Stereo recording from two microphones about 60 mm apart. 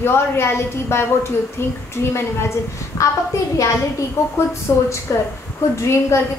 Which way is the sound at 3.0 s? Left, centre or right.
Left.